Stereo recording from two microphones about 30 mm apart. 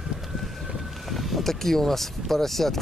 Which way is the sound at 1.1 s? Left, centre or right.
Centre.